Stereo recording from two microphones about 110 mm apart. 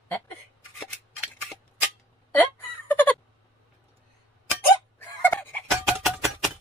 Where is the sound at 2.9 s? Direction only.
15° left (ahead or behind).